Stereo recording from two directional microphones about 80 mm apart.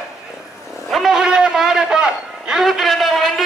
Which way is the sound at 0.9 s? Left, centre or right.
Centre.